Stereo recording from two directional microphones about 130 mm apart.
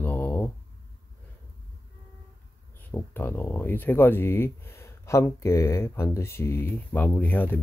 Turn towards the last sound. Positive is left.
turn(degrees=15)  # may be behind; listen again after turning